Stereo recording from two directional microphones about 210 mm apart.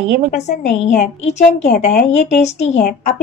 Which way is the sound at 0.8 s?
35° left (ahead or behind).